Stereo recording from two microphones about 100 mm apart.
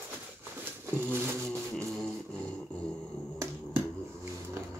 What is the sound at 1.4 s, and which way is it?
Music, 5° left (ahead or behind).